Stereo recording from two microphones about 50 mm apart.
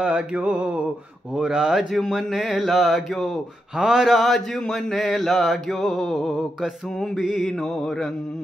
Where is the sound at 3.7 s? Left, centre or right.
Centre.